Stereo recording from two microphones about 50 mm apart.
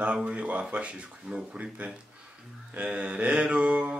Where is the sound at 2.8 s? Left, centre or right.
Right.